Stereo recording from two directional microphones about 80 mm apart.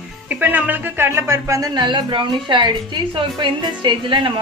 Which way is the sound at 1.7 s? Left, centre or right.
Right.